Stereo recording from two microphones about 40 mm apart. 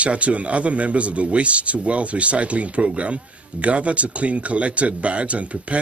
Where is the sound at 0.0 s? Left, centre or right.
Right.